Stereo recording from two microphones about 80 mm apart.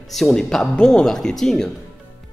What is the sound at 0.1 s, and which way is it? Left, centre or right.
A man's voice, centre.